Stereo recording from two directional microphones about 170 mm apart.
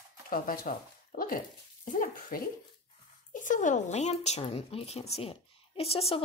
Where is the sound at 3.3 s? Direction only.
50° left (ahead or behind).